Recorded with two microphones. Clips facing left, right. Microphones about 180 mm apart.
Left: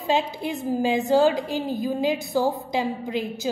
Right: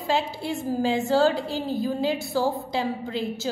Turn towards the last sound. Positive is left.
turn(degrees=15)  # may be behind; listen again after turning